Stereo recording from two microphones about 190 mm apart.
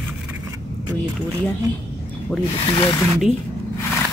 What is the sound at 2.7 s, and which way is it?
Speech, 25° left (ahead or behind).